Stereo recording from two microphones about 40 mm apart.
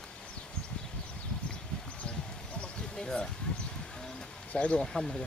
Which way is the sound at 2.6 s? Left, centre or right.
Left.